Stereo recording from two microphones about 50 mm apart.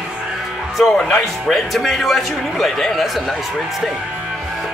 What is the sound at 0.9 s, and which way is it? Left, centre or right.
Speech, centre.